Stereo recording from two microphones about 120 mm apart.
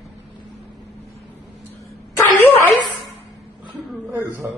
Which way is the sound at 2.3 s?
20° left (ahead or behind).